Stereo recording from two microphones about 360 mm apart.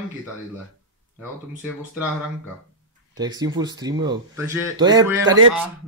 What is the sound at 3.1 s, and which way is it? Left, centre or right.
Speech, centre.